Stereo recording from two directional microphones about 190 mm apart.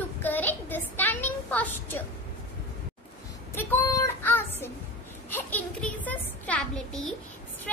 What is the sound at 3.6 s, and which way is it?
A child's voice, 10° left (ahead or behind).